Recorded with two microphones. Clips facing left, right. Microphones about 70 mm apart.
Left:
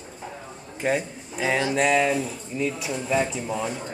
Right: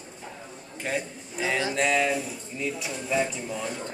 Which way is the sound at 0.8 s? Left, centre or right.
Left.